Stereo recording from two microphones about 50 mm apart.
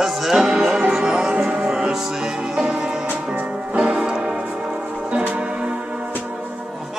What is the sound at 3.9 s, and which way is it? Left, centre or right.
Tick-tock, centre.